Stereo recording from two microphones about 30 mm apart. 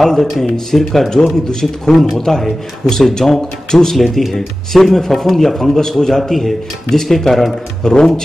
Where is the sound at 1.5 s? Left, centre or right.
Centre.